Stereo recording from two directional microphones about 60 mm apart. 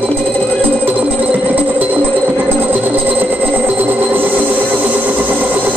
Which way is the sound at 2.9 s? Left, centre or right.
Right.